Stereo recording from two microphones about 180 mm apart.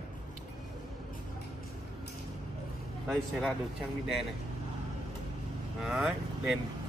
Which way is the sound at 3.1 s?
5° left (ahead or behind).